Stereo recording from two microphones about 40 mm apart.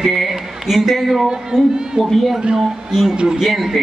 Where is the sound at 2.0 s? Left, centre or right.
Centre.